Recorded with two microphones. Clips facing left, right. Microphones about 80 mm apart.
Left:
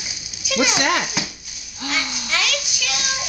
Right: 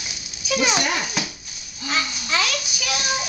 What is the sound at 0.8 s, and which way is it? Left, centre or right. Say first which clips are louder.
Speech: left 4 dB; left.